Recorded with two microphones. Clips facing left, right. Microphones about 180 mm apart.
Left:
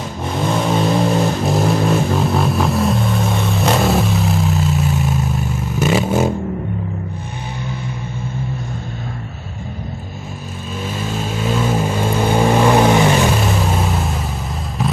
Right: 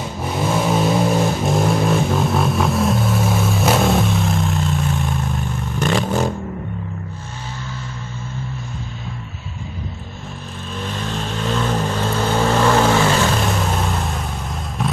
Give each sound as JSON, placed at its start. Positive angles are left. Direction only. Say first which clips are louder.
{"t": 0.2, "sound": "vehicle", "louder": "left 1 dB", "side_deg": -5}
{"t": 10.9, "sound": "vehicle", "louder": "left 3 dB", "side_deg": 5}
{"t": 13.4, "sound": "vehicle", "louder": "left 2 dB", "side_deg": 5}
{"t": 14.8, "sound": "a sound", "louder": "left 2 dB", "side_deg": 0}